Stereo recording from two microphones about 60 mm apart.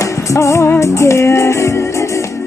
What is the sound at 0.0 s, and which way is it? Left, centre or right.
Music, left.